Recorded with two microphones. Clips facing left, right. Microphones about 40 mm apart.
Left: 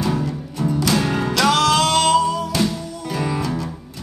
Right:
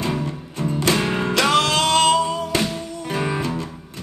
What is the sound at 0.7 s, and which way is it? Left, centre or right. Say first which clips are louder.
Music: even; right.